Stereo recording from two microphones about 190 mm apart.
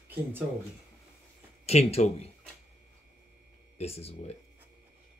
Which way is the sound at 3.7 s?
30° left (ahead or behind).